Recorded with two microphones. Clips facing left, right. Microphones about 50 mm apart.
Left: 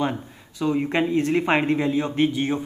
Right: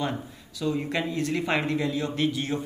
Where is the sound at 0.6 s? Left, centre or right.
Left.